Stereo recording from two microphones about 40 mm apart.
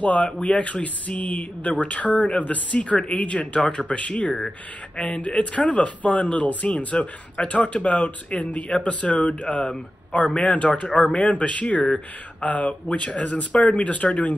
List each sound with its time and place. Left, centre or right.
0.0 s speech: left